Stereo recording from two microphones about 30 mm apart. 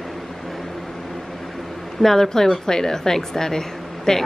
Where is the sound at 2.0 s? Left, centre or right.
Centre.